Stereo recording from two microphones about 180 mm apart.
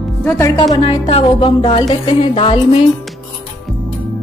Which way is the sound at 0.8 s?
30° left (ahead or behind).